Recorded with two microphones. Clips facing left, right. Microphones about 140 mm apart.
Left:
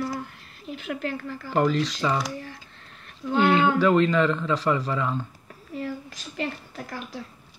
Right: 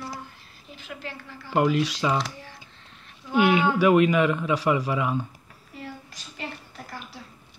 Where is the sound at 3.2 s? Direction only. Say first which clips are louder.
Left 1 dB; 50° left (ahead or behind).